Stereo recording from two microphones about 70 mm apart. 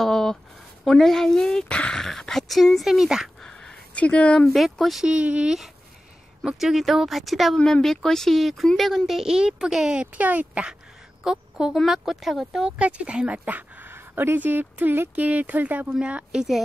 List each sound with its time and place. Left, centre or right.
0.0 s a sound: centre
0.8 s speech: centre
3.4 s a sound: centre
4.5 s speech: centre
5.0 s speech: centre
6.5 s speech: centre
7.5 s speech: centre
12.6 s speech: centre